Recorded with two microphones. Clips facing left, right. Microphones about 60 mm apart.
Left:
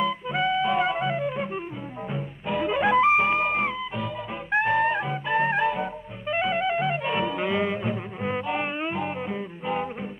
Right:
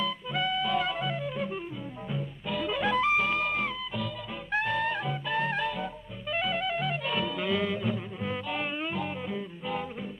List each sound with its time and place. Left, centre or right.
0.0 s music: left